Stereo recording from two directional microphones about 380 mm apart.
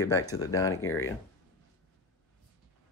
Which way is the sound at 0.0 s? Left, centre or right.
Centre.